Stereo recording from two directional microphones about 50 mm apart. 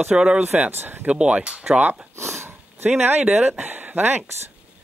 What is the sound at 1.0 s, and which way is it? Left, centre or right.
Speech, right.